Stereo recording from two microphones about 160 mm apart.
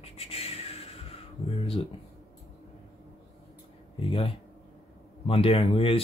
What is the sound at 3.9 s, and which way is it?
Speech, 35° left (ahead or behind).